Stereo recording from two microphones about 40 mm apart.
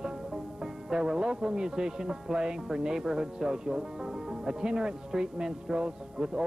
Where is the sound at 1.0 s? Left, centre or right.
Right.